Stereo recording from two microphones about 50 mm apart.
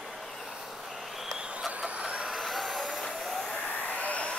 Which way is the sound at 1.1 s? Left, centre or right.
Centre.